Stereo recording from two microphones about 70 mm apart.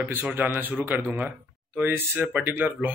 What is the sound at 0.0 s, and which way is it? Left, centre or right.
A man's voice, right.